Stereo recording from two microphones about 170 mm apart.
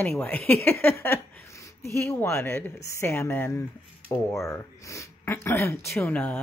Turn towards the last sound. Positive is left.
turn(degrees=10)  # may be behind; listen again after turning